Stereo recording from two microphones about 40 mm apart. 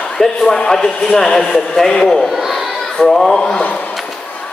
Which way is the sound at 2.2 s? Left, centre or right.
Centre.